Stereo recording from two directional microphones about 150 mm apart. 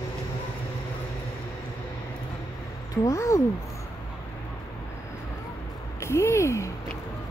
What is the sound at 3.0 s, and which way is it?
Speech, 20° left (ahead or behind).